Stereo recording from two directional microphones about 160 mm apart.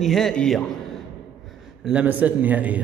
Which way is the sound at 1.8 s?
10° right (ahead or behind).